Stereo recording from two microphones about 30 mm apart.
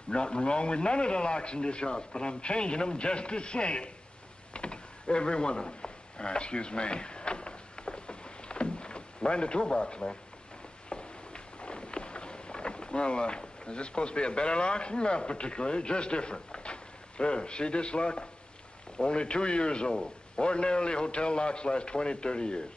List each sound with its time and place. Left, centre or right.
0.1 s a man's voice: left
4.6 s a sound: left
10.9 s boat: left
18.9 s a man's voice: left